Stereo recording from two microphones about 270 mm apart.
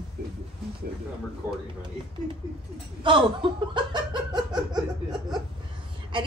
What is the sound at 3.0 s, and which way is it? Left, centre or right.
Laughter, centre.